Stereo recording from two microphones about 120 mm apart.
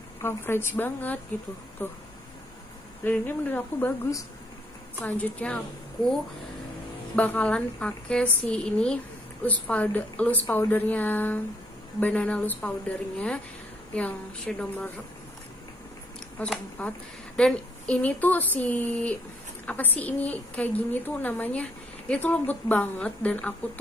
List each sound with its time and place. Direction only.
0.2 s a woman's voice: 20° left (ahead or behind)
3.0 s a woman's voice: 15° left (ahead or behind)
7.2 s a woman's voice: 10° left (ahead or behind)
13.9 s a woman's voice: 10° left (ahead or behind)
16.3 s a woman's voice: 10° left (ahead or behind)